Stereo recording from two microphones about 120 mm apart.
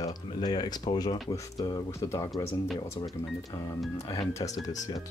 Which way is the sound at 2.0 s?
25° left (ahead or behind).